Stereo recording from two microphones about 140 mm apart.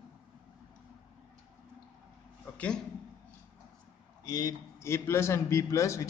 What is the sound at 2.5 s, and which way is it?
Speech, 10° left (ahead or behind).